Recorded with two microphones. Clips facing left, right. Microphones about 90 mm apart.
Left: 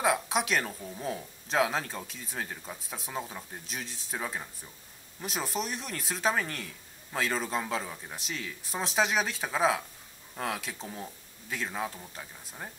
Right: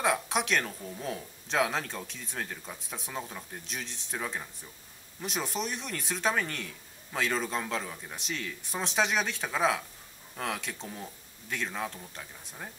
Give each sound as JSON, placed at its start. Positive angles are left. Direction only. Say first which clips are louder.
{"t": 0.0, "sound": "speech", "louder": "left 1 dB", "side_deg": 0}